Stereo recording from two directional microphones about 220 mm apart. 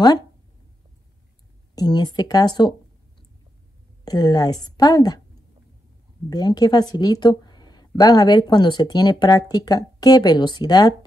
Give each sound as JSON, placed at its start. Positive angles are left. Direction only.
{"t": 1.8, "sound": "a woman's voice", "side_deg": 20}
{"t": 4.0, "sound": "a woman's voice", "side_deg": 20}
{"t": 6.3, "sound": "a woman's voice", "side_deg": 20}